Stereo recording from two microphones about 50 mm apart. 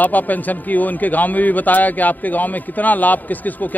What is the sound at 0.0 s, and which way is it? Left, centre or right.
A man's voice, left.